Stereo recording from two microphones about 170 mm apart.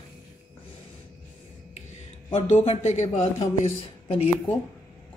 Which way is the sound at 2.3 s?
40° left (ahead or behind).